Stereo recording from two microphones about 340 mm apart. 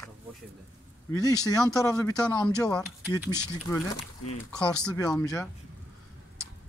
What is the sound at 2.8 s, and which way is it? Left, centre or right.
Speech, centre.